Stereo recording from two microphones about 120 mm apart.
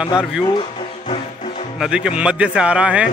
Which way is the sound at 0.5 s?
50° left (ahead or behind).